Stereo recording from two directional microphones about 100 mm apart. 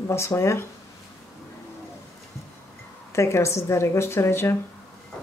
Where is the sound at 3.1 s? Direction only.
30° left (ahead or behind).